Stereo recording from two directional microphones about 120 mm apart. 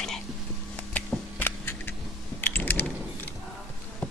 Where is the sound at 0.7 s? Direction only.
15° left (ahead or behind).